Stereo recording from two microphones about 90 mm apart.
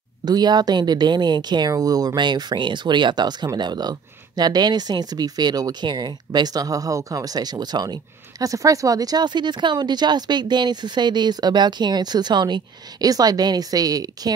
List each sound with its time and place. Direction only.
0.2 s speech: 50° right (ahead or behind)